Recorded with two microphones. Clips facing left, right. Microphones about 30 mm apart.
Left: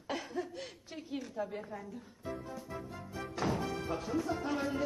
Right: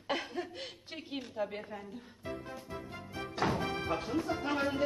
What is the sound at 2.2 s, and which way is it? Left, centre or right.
Speech, right.